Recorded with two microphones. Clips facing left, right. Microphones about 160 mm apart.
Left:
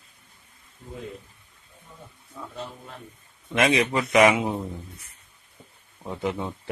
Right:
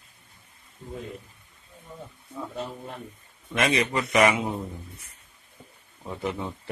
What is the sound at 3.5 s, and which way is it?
A man's voice, 15° left (ahead or behind).